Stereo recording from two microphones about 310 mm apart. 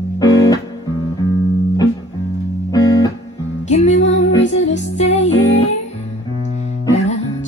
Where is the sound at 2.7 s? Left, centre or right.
Centre.